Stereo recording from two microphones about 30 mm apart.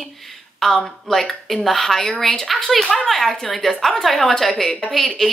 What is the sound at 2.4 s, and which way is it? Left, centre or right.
Speech, centre.